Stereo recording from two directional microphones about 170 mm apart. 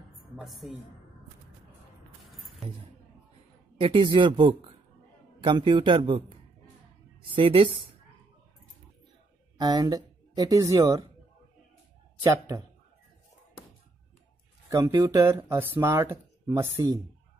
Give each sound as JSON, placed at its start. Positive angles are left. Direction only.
{"t": 0.4, "sound": "a woman's voice", "side_deg": 0}
{"t": 3.8, "sound": "speech", "side_deg": -30}
{"t": 7.2, "sound": "a woman's voice", "side_deg": -30}
{"t": 9.6, "sound": "speech", "side_deg": -25}
{"t": 12.2, "sound": "speech", "side_deg": -20}
{"t": 14.7, "sound": "speech", "side_deg": -20}